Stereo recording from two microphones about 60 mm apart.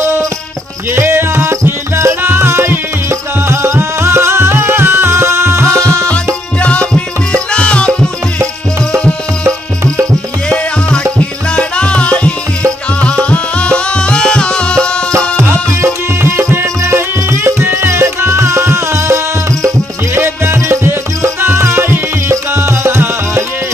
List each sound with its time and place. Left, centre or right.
0.9 s music: right
2.2 s music: right
5.8 s music: right
6.6 s music: centre
10.9 s music: centre
15.4 s music: right